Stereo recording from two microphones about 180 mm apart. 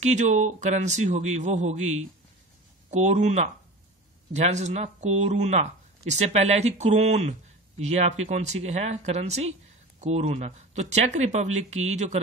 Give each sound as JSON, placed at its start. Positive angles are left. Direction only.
{"t": 0.0, "sound": "speech", "side_deg": -40}